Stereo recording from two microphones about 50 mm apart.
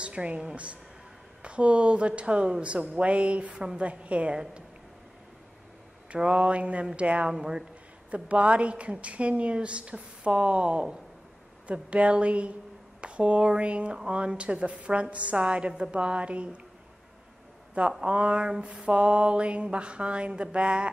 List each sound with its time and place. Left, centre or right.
0.0 s speech: right
1.4 s mantra: right
6.1 s mantra: right
7.0 s speech: right
8.1 s mantra: right
18.0 s mantra: right